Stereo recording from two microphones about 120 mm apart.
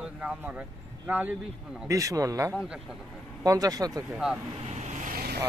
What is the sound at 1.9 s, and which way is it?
Speech, 30° right (ahead or behind).